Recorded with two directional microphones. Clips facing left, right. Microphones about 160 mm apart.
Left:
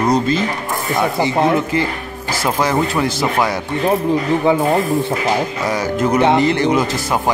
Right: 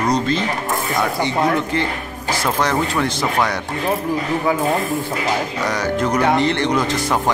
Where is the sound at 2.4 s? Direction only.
5° left (ahead or behind).